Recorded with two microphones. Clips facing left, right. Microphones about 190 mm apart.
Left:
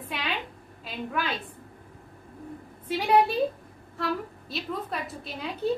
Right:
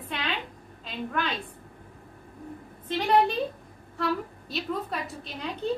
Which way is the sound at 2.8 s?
10° left (ahead or behind).